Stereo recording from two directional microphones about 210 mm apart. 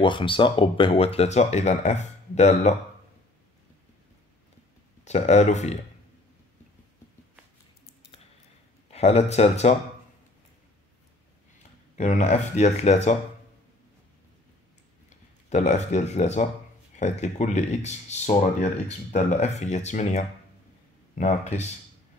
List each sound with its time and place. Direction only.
0.0 s speech: 25° left (ahead or behind)
5.0 s speech: 35° left (ahead or behind)
8.9 s speech: 30° left (ahead or behind)
12.0 s speech: 35° left (ahead or behind)
15.5 s speech: 35° left (ahead or behind)